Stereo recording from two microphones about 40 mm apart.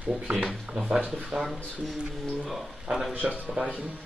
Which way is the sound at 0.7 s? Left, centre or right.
Right.